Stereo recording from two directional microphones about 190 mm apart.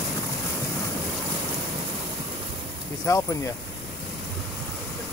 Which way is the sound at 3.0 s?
15° left (ahead or behind).